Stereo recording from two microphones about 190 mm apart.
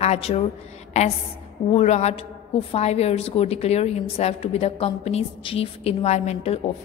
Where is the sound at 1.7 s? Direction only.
35° left (ahead or behind).